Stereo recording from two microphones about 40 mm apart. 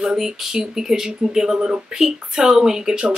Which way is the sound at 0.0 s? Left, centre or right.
Centre.